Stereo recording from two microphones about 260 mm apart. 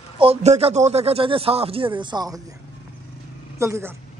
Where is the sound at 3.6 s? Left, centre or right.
Centre.